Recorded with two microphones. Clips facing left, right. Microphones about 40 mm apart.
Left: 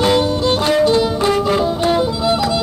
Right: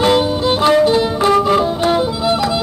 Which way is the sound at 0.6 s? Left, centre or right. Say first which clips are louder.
Right 3 dB; right.